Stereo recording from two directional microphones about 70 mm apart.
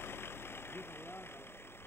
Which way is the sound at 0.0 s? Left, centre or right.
Left.